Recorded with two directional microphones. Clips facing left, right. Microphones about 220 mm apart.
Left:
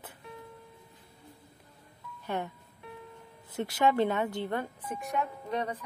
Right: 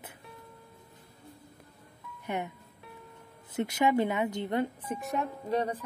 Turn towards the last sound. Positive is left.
turn(degrees=-30)  # may be behind; listen again after turning